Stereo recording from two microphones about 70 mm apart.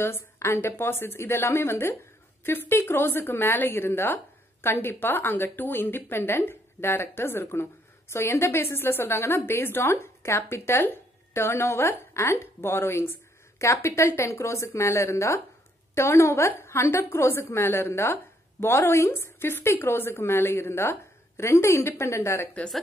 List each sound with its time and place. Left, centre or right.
0.0 s a woman's voice: left